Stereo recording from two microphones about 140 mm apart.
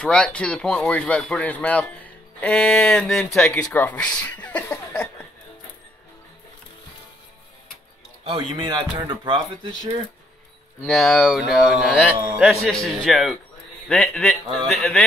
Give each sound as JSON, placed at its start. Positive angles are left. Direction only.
{"t": 0.0, "sound": "speech", "side_deg": 5}
{"t": 8.2, "sound": "speech", "side_deg": -40}
{"t": 10.9, "sound": "a man's voice", "side_deg": 0}